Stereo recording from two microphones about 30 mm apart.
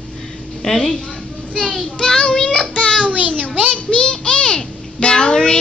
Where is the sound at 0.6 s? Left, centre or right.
Centre.